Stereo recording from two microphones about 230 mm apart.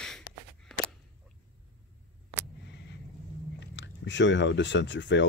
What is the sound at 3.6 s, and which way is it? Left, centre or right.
Speech, left.